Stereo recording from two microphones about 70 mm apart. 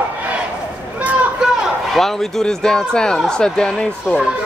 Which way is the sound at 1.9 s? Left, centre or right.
Centre.